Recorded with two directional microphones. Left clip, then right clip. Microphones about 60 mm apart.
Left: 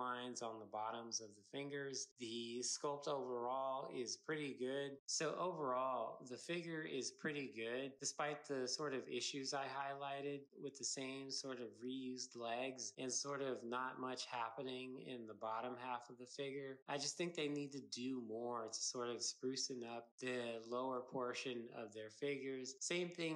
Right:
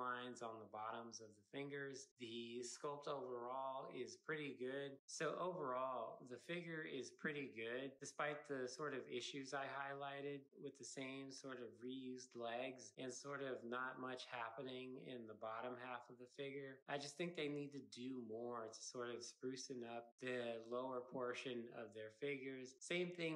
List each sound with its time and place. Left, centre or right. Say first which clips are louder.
0.0 s speech: left 2 dB; left
5.1 s speech: left 3 dB; left